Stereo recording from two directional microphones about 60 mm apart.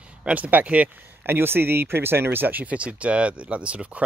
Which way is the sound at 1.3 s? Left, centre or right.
Right.